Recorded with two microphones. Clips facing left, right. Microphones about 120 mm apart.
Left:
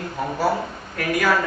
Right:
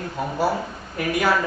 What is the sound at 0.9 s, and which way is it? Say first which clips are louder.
Speech: even; 20° right (ahead or behind).